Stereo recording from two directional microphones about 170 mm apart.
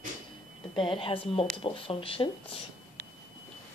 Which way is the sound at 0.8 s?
30° left (ahead or behind).